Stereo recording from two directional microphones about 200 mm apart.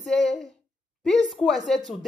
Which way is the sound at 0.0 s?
5° left (ahead or behind).